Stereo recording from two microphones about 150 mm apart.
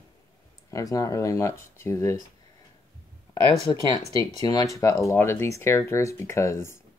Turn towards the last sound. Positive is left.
turn(degrees=15)  # may be behind; listen again after turning